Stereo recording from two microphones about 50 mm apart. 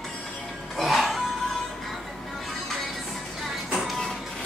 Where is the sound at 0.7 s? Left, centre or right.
Centre.